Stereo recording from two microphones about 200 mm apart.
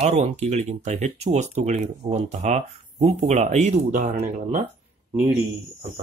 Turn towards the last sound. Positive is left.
turn(degrees=-10)  # may be behind; listen again after turning